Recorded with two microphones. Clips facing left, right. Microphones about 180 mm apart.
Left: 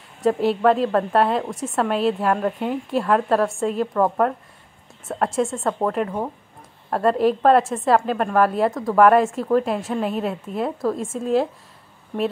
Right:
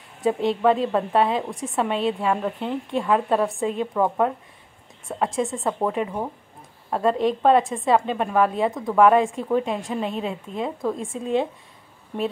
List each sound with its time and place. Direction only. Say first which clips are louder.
0.2 s a woman's voice: left 2 dB; centre (ahead or behind)